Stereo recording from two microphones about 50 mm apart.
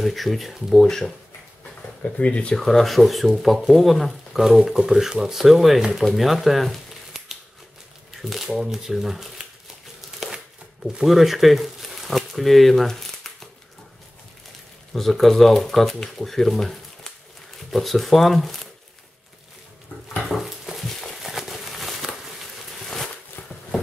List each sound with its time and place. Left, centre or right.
0.0 s speech: centre
0.7 s speech: centre
2.0 s speech: left
2.6 s speech: centre
10.2 s crumpling: centre
11.0 s speech: centre
15.0 s speech: centre
20.2 s stir: centre
21.2 s a sound: centre